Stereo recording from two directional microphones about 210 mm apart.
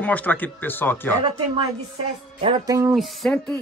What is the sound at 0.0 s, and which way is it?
Speech, 5° left (ahead or behind).